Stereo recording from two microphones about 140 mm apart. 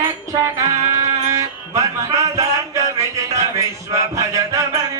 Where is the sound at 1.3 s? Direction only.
20° right (ahead or behind).